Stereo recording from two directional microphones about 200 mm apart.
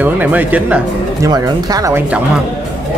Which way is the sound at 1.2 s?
20° right (ahead or behind).